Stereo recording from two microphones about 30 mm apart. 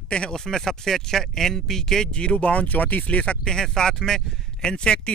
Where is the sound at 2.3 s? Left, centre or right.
Left.